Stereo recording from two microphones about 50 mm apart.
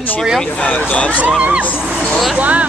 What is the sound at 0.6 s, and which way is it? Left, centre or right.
Speech, left.